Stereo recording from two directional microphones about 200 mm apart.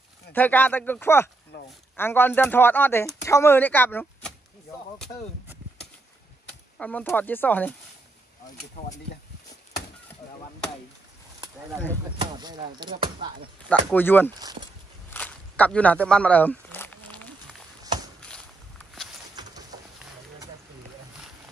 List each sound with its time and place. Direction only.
0.3 s speech: 10° left (ahead or behind)
6.8 s speech: 5° left (ahead or behind)
12.2 s speech: 20° right (ahead or behind)
13.7 s speech: 10° left (ahead or behind)
15.0 s a sound: 5° left (ahead or behind)